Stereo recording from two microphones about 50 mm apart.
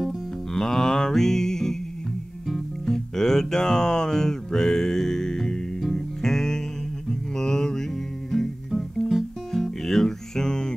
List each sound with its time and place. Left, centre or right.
0.0 s music: centre
2.8 s music: centre
7.1 s mantra: centre
8.3 s music: centre